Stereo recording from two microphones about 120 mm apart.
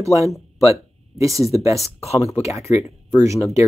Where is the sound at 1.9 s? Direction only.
60° left (ahead or behind).